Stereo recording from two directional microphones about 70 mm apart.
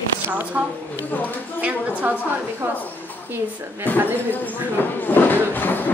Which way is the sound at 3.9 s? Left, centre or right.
Left.